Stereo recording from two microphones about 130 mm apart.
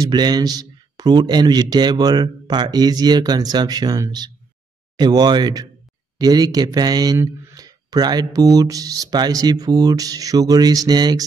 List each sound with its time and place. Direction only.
0.0 s speech: 35° right (ahead or behind)